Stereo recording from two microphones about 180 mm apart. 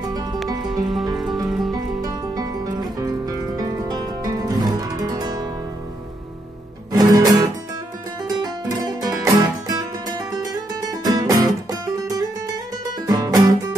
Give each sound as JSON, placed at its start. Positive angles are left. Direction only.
{"t": 0.8, "sound": "music", "side_deg": 0}
{"t": 2.0, "sound": "music", "side_deg": -20}
{"t": 6.9, "sound": "music", "side_deg": -20}